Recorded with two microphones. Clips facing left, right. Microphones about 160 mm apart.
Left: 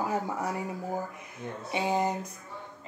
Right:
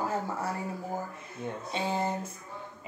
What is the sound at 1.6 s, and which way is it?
Speech, 15° left (ahead or behind).